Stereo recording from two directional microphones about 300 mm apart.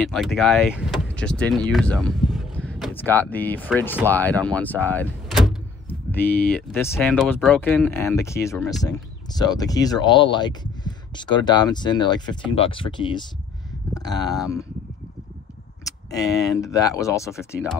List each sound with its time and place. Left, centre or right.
0.0 s speech: centre
15.8 s speech: centre